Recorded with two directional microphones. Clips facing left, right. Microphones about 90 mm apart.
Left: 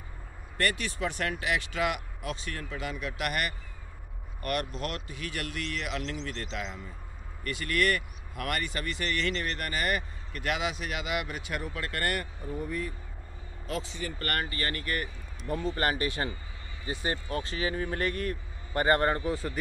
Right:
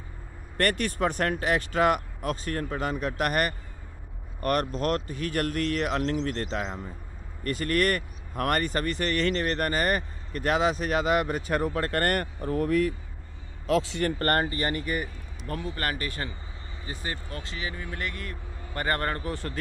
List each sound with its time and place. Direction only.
0.6 s speech: 50° right (ahead or behind)
12.4 s speech: 85° right
14.1 s speech: 35° right (ahead or behind); by 15.0 s 15° right (ahead or behind)
15.7 s a man's voice: 25° left (ahead or behind)
18.8 s a man's voice: 20° left (ahead or behind)